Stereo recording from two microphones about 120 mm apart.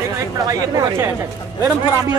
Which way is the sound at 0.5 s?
30° right (ahead or behind).